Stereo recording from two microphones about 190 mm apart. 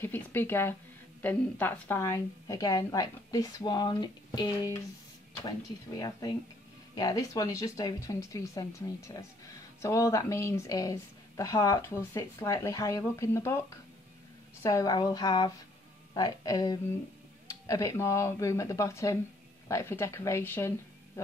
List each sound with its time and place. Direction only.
0.0 s a woman's voice: 10° left (ahead or behind)